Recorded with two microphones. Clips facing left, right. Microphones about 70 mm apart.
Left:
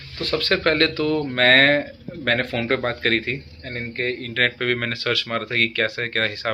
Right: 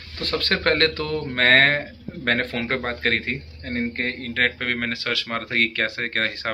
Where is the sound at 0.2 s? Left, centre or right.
Right.